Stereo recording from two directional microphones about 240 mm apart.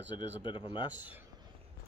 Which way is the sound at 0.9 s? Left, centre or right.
Centre.